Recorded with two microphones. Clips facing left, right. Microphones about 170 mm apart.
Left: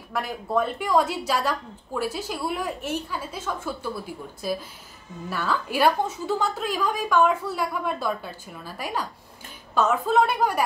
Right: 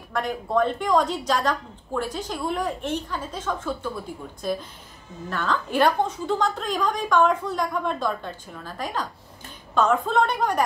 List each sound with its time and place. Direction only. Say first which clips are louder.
0.1 s a woman's voice: right 1 dB; 5° left (ahead or behind)